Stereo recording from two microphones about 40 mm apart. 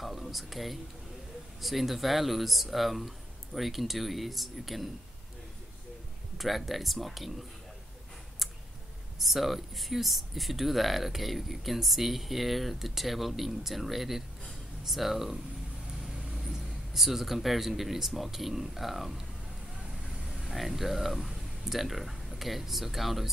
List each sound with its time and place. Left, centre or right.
0.0 s speech: centre
6.3 s speech: centre
8.4 s clicking: centre
9.2 s speech: centre
19.8 s vehicle: centre
20.3 s speech: centre